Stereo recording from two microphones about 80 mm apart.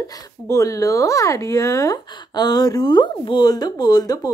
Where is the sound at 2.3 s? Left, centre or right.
Left.